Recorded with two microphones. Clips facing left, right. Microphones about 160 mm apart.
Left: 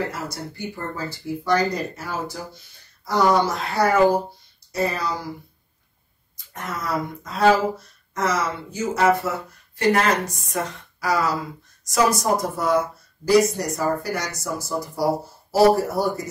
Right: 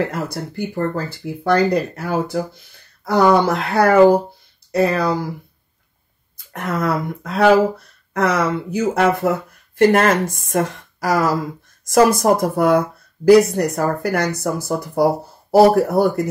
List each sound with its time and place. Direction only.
0.1 s speech: 60° right (ahead or behind)
6.5 s speech: 60° right (ahead or behind)
9.8 s speech: 50° right (ahead or behind)